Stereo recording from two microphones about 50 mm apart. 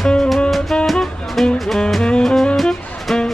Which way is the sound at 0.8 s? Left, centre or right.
Centre.